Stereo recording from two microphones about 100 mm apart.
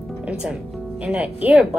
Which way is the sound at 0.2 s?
10° right (ahead or behind).